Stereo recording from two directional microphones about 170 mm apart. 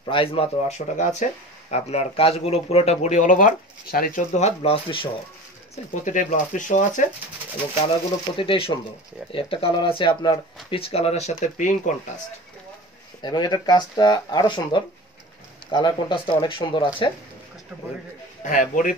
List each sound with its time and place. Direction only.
0.0 s speech: 30° left (ahead or behind)
6.0 s speech: 45° left (ahead or behind)
8.4 s speech: 30° left (ahead or behind); by 11.9 s 45° left (ahead or behind)
13.2 s speech: 25° left (ahead or behind)
18.4 s speech: 50° left (ahead or behind)